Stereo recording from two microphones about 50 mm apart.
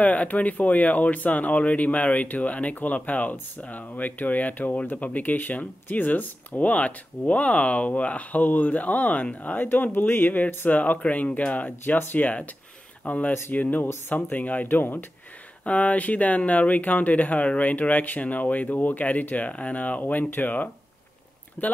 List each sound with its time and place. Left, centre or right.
0.0 s speech: left
9.7 s speech: left
15.6 s speech: left